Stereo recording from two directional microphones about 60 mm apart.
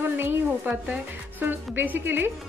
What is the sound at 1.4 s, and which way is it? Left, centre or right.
Speech, right.